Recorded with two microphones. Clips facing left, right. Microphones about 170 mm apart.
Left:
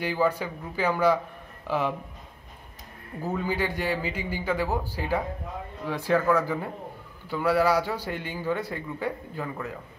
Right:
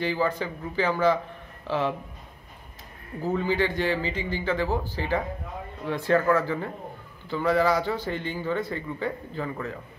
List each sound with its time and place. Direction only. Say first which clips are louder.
0.0 s a man's voice: even; 10° left (ahead or behind)
3.3 s a man's voice: right 3 dB; 10° left (ahead or behind)